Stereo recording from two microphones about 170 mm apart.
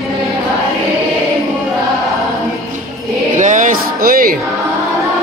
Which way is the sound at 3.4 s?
50° right (ahead or behind).